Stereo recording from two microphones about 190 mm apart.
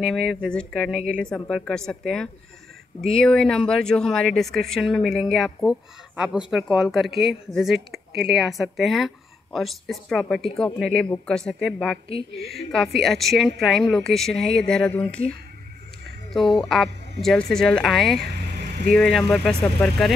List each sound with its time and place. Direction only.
0.0 s speech: centre (ahead or behind)
12.1 s a woman's voice: 30° left (ahead or behind)
12.7 s speech: centre (ahead or behind)
16.3 s speech: centre (ahead or behind)